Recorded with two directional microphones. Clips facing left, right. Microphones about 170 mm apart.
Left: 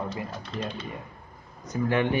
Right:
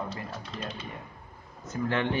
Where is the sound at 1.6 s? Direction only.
15° left (ahead or behind).